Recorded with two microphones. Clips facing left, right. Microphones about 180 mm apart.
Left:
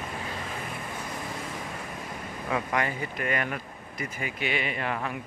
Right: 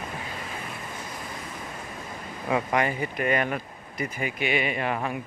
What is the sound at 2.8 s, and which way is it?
Speech, 20° right (ahead or behind).